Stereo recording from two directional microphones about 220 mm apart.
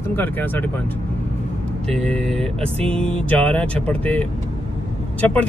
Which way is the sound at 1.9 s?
5° left (ahead or behind).